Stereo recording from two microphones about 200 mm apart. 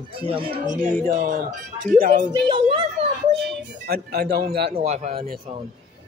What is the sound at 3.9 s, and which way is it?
Speech, 50° right (ahead or behind).